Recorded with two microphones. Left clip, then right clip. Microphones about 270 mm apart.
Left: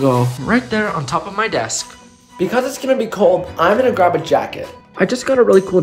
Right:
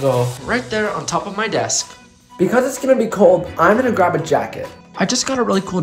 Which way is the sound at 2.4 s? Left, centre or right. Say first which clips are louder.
Right 2 dB; right.